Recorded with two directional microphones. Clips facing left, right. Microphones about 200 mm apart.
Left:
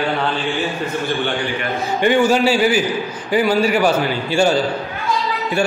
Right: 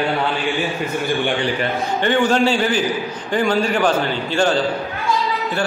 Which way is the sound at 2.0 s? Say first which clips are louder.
Left 2 dB; 10° left (ahead or behind).